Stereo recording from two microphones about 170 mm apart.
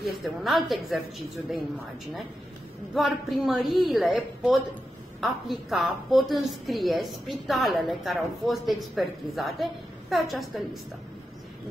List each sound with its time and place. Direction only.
0.0 s a woman's voice: centre (ahead or behind)
2.9 s a woman's voice: centre (ahead or behind)